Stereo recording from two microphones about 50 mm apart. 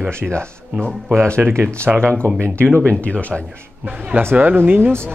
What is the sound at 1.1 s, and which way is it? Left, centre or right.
Speech, right.